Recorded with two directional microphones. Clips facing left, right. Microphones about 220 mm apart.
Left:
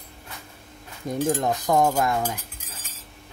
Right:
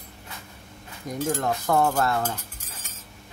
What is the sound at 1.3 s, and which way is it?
Speech, 15° left (ahead or behind).